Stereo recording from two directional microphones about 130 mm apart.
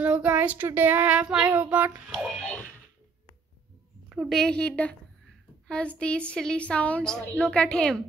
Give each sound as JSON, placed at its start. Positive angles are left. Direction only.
{"t": 0.0, "sound": "child singing", "side_deg": -10}
{"t": 2.0, "sound": "speech", "side_deg": 5}
{"t": 4.1, "sound": "a woman's voice", "side_deg": -5}
{"t": 4.4, "sound": "a woman's voice", "side_deg": 5}